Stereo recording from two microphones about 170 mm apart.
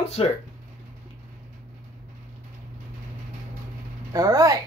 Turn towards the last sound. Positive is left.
turn(degrees=-20)  # may be behind; listen again after turning